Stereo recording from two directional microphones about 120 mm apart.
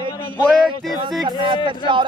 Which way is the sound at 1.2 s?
40° right (ahead or behind).